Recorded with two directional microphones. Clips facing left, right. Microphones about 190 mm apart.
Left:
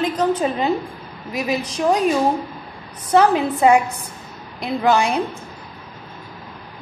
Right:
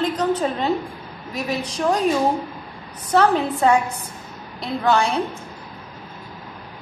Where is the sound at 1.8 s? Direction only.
15° left (ahead or behind).